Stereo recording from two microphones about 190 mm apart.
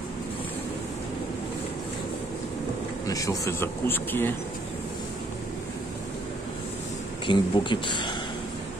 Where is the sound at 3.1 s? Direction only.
15° left (ahead or behind).